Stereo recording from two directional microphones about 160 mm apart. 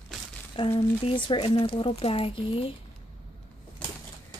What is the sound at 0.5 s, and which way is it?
Speech, 35° left (ahead or behind).